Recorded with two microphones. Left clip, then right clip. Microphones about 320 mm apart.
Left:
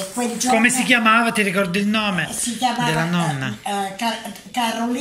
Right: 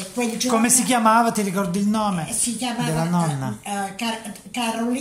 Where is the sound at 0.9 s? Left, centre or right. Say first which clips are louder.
Right 1 dB; centre.